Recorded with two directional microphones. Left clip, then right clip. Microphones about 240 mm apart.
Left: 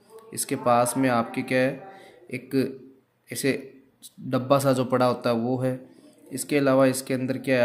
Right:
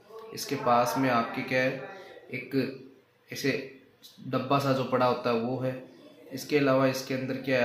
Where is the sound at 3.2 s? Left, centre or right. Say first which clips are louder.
Left 3 dB; left.